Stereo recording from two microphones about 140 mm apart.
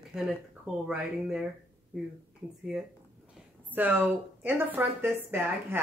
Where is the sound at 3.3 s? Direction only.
10° right (ahead or behind).